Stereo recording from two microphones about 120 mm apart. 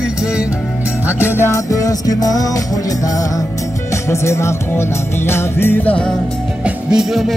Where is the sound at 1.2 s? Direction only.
20° left (ahead or behind).